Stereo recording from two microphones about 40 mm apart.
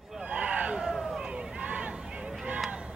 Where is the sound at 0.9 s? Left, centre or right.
Centre.